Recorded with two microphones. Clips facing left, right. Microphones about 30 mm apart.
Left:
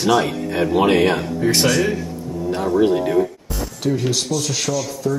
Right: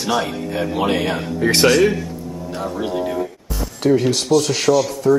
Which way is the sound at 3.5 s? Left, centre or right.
Centre.